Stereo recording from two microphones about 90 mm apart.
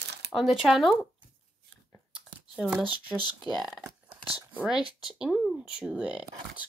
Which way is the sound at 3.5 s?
5° right (ahead or behind).